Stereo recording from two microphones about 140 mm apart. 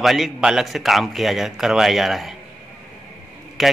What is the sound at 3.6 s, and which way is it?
Speech, centre (ahead or behind).